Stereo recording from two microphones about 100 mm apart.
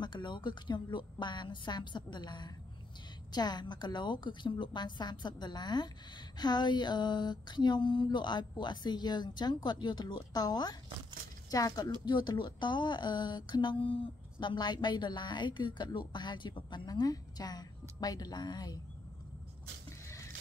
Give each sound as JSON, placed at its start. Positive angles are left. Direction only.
{"t": 0.0, "sound": "speech", "side_deg": 50}
{"t": 12.0, "sound": "speech", "side_deg": 50}